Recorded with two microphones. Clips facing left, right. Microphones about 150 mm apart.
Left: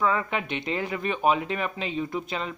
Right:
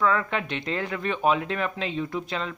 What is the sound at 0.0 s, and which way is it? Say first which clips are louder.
Speech: right 1 dB; 10° left (ahead or behind).